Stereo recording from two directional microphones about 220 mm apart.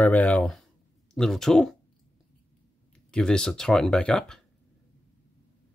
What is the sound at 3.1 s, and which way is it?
Speech, 5° left (ahead or behind).